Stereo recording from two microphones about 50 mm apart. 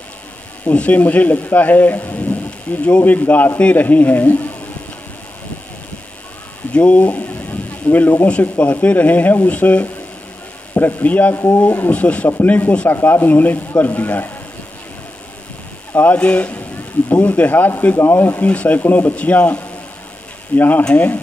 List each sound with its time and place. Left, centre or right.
0.7 s speech: left
3.5 s speech: left
6.7 s a sound: left
8.3 s speech: left
11.3 s speech: left
11.9 s speech: left
12.9 s speech: left
16.1 s speech: left
18.8 s speech: left